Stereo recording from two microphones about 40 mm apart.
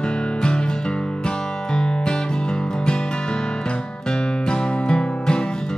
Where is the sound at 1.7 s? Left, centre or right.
Left.